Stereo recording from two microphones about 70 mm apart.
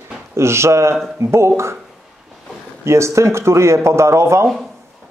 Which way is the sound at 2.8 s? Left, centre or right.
Right.